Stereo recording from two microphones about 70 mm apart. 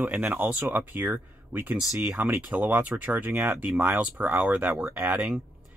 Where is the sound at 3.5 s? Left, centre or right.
Centre.